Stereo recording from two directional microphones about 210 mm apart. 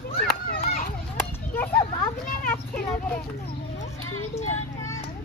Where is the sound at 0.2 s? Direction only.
45° left (ahead or behind).